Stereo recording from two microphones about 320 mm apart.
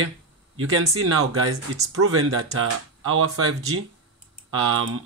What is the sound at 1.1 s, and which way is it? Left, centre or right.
Speech, right.